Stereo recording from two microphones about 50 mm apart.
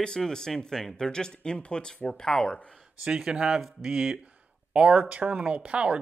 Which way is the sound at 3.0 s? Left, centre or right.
Centre.